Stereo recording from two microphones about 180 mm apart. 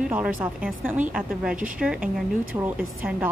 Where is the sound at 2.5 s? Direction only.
15° right (ahead or behind).